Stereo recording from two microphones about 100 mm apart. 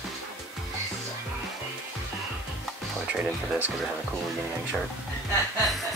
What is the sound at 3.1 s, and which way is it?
Speech, 15° right (ahead or behind).